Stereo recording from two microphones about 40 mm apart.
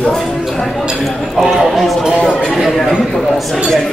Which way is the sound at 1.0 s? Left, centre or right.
Centre.